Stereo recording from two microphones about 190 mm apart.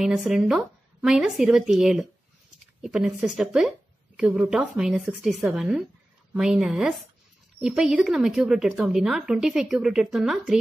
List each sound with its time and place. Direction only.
0.0 s a woman's voice: centre (ahead or behind)